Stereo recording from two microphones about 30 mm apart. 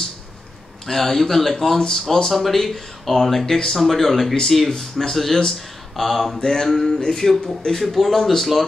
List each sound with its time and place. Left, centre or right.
0.8 s speech: centre
3.4 s speech: left
3.7 s speech: centre
5.1 s speech: centre
6.4 s speech: centre
6.7 s speech: centre